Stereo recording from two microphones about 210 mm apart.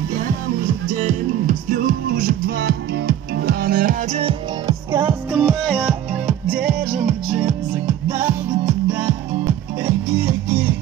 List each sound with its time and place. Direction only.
0.8 s music: 40° right (ahead or behind)
4.2 s music: 20° right (ahead or behind)
5.4 s music: 5° left (ahead or behind)
8.2 s music: 20° right (ahead or behind)